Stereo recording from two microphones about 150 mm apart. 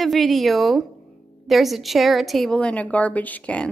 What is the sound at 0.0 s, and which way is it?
A woman's voice, centre (ahead or behind).